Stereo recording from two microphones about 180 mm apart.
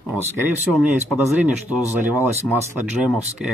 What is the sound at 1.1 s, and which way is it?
Speech, 10° right (ahead or behind).